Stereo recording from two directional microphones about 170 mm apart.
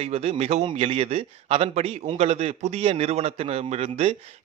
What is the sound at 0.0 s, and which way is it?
A man's voice, 35° right (ahead or behind).